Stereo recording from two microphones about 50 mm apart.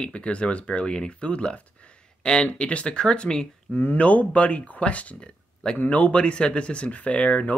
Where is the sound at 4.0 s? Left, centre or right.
Left.